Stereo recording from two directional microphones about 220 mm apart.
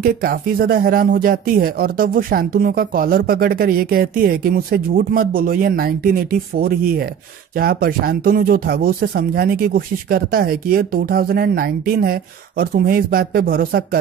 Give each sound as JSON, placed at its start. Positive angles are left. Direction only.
{"t": 0.0, "sound": "speech", "side_deg": -40}